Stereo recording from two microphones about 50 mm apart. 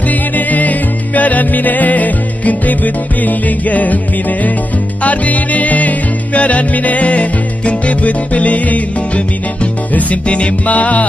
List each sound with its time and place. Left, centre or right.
0.1 s music: left